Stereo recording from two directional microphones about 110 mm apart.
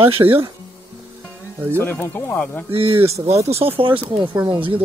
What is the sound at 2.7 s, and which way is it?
Speech, 60° right (ahead or behind).